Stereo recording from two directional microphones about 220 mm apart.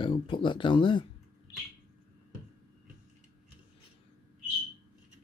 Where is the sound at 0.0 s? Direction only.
20° left (ahead or behind).